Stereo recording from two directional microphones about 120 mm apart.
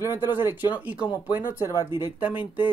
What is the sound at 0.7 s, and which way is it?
Speech, 10° right (ahead or behind).